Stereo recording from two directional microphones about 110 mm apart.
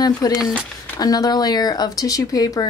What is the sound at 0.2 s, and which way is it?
Speech, 35° left (ahead or behind).